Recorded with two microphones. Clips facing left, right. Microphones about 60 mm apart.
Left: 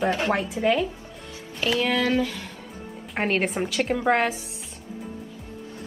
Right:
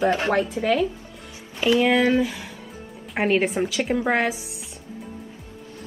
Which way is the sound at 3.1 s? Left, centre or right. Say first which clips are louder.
Right 3 dB; centre.